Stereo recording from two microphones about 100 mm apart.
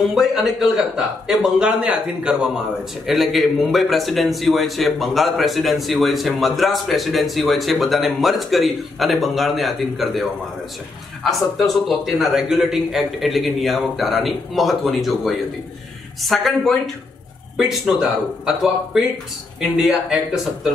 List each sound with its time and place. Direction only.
0.1 s a man's voice: 5° right (ahead or behind)
11.2 s a man's voice: centre (ahead or behind)
19.8 s a man's voice: 5° right (ahead or behind)